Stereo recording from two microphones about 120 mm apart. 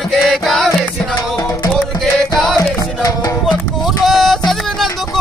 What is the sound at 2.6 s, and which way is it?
Music, 30° left (ahead or behind).